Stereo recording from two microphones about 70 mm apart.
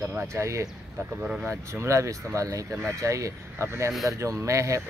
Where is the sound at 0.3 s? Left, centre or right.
Right.